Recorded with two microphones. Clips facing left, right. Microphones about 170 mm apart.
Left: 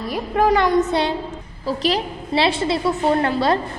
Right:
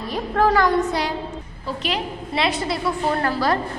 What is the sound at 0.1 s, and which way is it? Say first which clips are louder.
A woman's voice: left 1 dB; 15° left (ahead or behind).